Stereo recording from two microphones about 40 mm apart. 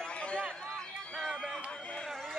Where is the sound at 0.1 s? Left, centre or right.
Left.